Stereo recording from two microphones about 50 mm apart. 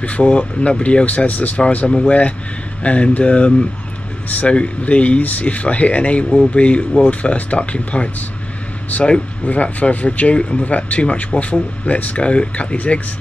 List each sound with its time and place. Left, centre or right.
0.0 s speech: left